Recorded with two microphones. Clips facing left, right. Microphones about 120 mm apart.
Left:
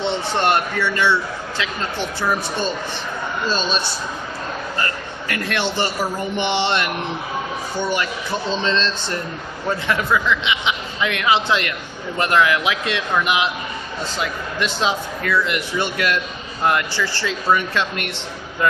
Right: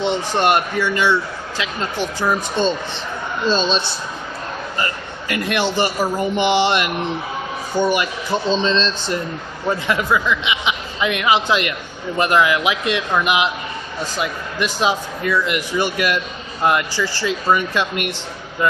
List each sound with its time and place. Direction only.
0.0 s speech: 15° right (ahead or behind)
4.7 s a man's voice: 15° right (ahead or behind)